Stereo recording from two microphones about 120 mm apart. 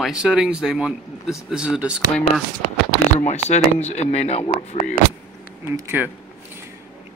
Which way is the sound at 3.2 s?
70° left (ahead or behind).